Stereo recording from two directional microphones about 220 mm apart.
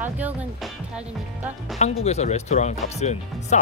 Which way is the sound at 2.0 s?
30° left (ahead or behind).